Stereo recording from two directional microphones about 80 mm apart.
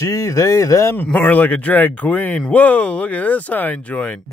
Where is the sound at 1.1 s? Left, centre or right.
Left.